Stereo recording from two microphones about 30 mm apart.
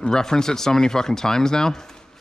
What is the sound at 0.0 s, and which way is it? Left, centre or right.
Speech, left.